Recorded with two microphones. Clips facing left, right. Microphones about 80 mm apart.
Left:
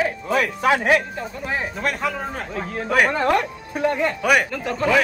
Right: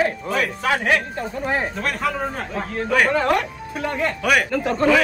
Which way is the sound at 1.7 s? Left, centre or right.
Centre.